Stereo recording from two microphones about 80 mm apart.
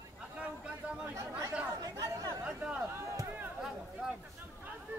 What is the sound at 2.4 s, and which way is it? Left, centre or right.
Chatter, centre.